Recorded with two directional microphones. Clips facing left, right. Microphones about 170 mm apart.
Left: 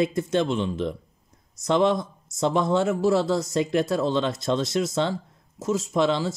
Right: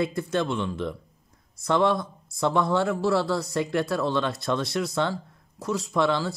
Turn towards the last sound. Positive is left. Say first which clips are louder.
# left 1 dB
turn(degrees=20)  # may be behind; listen again after turning